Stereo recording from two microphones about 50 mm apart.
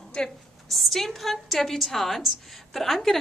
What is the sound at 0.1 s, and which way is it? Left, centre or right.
Speech, centre.